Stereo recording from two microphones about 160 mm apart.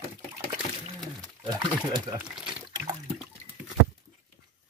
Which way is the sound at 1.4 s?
30° right (ahead or behind).